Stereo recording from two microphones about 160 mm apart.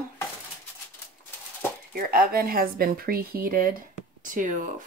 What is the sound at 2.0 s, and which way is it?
Speech, 65° right (ahead or behind).